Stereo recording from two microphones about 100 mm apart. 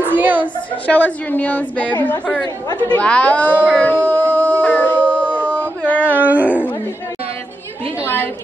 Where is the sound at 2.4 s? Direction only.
40° left (ahead or behind).